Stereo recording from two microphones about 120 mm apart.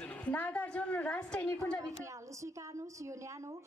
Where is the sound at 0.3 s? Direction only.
15° left (ahead or behind).